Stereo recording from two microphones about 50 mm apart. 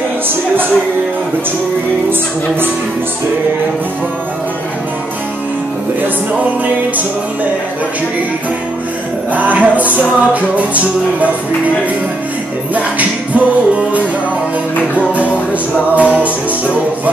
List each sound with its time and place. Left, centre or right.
9.3 s music: right
12.7 s music: right